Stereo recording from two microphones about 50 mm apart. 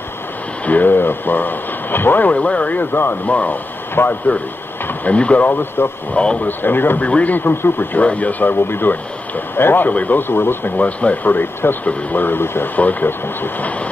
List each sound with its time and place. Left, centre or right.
0.7 s speech: left
2.3 s speech: left
3.3 s speech: left
3.9 s speech: left
5.1 s speech: left
5.5 s speech: left
7.0 s speech: left
7.3 s speech: left
8.0 s speech: left
9.8 s speech: left
10.8 s speech: left